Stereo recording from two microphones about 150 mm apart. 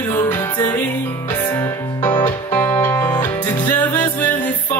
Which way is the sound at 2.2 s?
30° left (ahead or behind).